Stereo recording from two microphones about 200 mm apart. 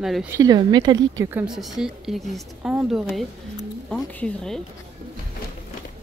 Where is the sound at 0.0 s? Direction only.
Centre (ahead or behind).